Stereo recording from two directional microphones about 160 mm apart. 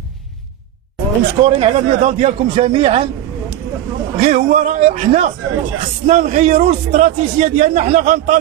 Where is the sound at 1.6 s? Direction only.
40° right (ahead or behind).